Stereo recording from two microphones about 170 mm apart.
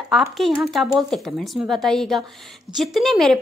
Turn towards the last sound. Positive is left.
turn(degrees=0)  # may be behind; listen again after turning